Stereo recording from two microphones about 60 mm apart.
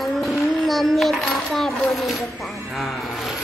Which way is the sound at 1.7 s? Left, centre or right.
Centre.